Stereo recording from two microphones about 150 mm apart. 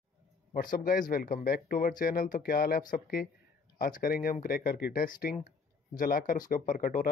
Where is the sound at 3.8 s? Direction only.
70° left (ahead or behind).